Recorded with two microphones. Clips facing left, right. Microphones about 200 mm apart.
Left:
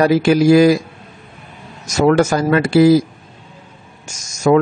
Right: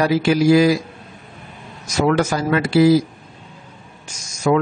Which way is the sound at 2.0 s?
45° left (ahead or behind).